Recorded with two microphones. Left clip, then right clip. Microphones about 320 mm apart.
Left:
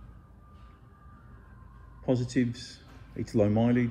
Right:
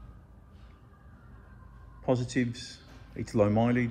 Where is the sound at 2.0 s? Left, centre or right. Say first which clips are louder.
Even; right.